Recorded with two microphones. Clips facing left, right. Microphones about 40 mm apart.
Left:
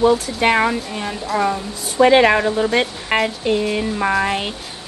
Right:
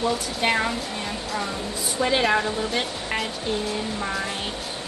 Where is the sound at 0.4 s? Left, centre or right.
Left.